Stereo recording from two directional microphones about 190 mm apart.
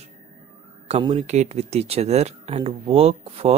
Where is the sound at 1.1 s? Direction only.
35° right (ahead or behind).